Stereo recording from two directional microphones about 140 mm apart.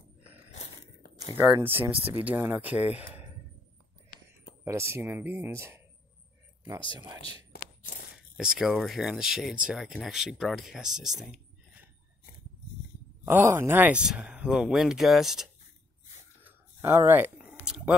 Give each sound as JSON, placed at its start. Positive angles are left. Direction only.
{"t": 1.4, "sound": "speech", "side_deg": -15}
{"t": 4.6, "sound": "speech", "side_deg": -20}
{"t": 7.2, "sound": "speech", "side_deg": 40}
{"t": 7.6, "sound": "a sound", "side_deg": 85}
{"t": 8.4, "sound": "speech", "side_deg": -5}
{"t": 13.2, "sound": "speech", "side_deg": -15}
{"t": 16.4, "sound": "a sound", "side_deg": -15}